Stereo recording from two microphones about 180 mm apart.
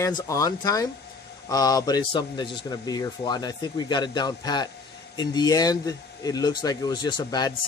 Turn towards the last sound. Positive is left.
turn(degrees=20)  # may be behind; listen again after turning